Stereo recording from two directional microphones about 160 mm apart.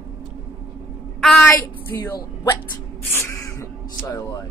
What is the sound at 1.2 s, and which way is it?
Speech, 5° left (ahead or behind).